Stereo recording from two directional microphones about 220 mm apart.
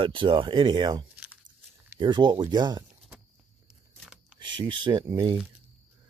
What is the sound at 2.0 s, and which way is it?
Speech, 20° right (ahead or behind).